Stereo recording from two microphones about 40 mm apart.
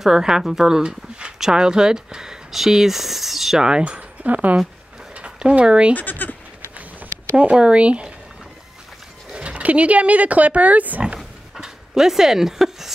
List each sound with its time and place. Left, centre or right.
0.0 s speech: centre
3.6 s speech: right
4.2 s speech: right
5.1 s zipper: right
5.9 s speech: left
7.3 s speech: right
9.3 s speech: right
11.5 s dog: centre